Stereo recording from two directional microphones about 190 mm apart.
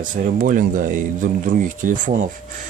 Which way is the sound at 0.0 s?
45° right (ahead or behind).